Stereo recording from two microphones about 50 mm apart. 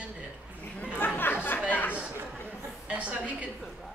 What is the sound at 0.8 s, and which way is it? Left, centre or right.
Speech, left.